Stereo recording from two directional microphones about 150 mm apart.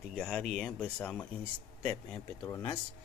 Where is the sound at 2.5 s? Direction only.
20° left (ahead or behind).